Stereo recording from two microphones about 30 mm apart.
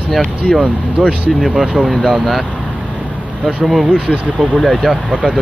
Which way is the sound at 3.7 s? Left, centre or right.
Centre.